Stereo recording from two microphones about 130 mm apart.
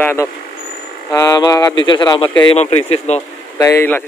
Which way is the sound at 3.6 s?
25° left (ahead or behind).